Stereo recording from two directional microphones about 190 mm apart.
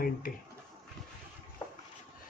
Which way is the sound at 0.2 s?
45° left (ahead or behind).